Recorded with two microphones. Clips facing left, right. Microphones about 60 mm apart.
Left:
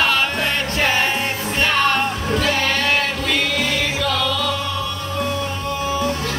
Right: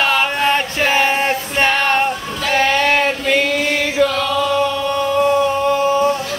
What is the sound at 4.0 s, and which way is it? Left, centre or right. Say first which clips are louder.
Chant: right 10 dB; right.